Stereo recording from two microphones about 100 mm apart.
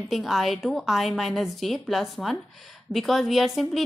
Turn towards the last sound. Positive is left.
turn(degrees=0)  # may be behind; listen again after turning